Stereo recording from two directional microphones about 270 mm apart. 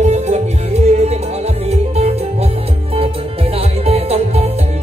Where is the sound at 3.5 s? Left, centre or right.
Right.